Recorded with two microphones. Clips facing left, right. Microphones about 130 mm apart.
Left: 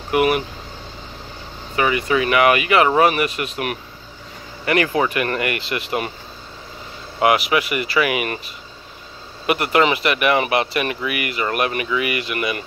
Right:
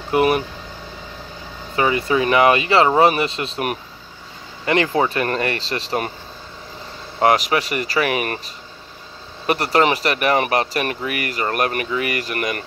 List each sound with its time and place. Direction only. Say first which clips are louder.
0.1 s speech: right 1 dB; 30° right (ahead or behind)
1.8 s speech: right 1 dB; 30° right (ahead or behind)
7.2 s speech: even; 40° right (ahead or behind)
9.5 s speech: even; 40° right (ahead or behind)